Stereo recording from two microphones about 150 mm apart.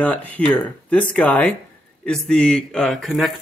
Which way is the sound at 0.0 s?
10° left (ahead or behind).